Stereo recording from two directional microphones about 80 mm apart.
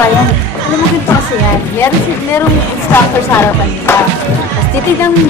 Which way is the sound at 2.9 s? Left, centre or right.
Left.